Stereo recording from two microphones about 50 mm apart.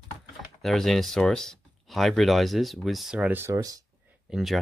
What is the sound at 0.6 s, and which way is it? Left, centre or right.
Speech, centre.